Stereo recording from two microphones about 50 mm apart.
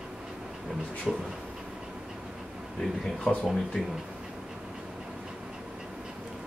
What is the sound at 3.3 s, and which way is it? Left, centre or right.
Speech, centre.